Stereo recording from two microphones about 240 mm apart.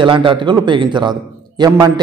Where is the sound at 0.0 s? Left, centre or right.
Right.